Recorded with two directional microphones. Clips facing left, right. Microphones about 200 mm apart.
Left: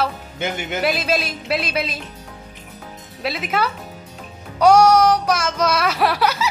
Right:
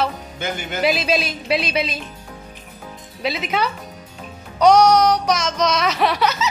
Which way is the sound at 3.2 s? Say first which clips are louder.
Even; 5° left (ahead or behind).